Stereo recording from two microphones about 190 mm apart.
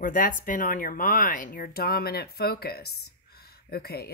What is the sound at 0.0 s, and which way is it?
Speech, 45° left (ahead or behind).